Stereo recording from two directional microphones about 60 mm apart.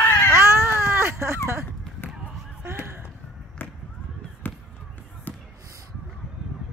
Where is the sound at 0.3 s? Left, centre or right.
Right.